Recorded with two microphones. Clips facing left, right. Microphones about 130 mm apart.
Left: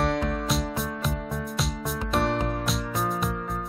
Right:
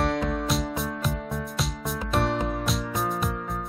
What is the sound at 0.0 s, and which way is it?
Music, centre (ahead or behind).